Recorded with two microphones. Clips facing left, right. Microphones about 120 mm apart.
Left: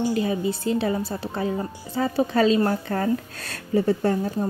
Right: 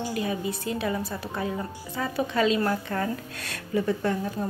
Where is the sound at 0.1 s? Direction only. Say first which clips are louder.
Left 5 dB; 30° left (ahead or behind).